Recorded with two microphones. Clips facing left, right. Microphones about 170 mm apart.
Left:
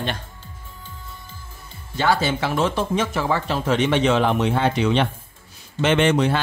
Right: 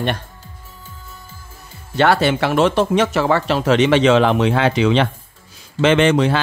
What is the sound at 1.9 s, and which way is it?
A man's voice, 70° right (ahead or behind).